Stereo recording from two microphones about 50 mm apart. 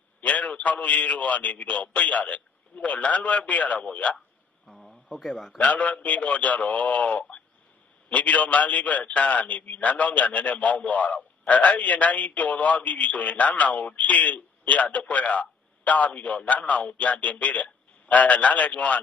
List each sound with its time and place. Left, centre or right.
0.2 s a man's voice: left
4.7 s speech: centre
5.6 s a man's voice: left